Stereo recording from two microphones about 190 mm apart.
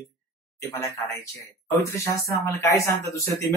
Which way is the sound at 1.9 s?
15° left (ahead or behind).